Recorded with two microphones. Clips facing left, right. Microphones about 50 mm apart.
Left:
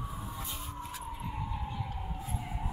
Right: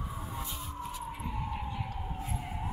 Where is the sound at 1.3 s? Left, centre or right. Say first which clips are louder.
Right 3 dB; right.